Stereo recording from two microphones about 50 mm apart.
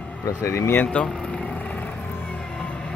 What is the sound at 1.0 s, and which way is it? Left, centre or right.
Speech, left.